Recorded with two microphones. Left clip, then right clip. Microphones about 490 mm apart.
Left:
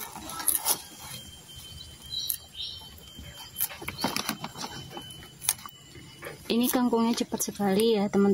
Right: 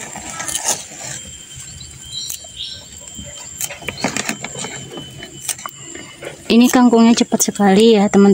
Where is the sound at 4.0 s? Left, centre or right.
Left.